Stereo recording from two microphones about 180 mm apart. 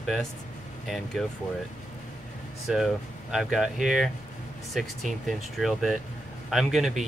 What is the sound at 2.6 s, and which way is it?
Speech, centre (ahead or behind).